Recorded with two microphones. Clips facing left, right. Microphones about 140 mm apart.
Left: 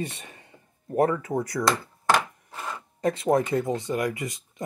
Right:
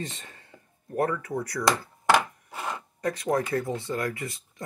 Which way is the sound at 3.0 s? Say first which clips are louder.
Left 4 dB; 25° left (ahead or behind).